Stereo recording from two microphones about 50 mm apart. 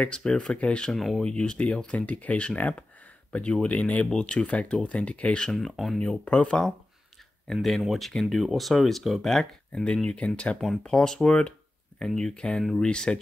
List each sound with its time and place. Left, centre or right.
0.0 s speech: left
0.9 s speech: centre
1.2 s speech: centre
5.5 s speech: centre
6.2 s speech: left
7.5 s speech: centre
7.8 s speech: centre
9.7 s speech: left
10.8 s speech: centre
12.5 s speech: centre
12.8 s speech: centre